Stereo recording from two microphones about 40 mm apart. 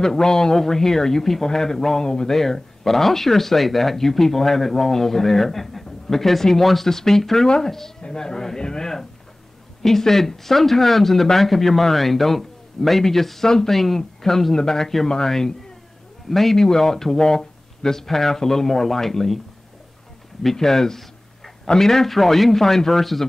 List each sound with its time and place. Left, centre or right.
0.0 s speech: centre
2.3 s speech: centre
7.4 s a man's voice: centre
20.5 s speech: centre